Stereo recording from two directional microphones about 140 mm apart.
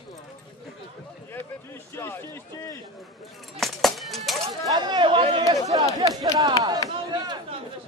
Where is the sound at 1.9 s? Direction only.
15° left (ahead or behind).